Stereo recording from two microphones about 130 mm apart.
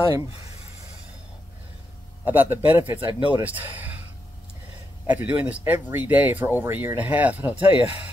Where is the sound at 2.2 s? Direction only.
15° right (ahead or behind).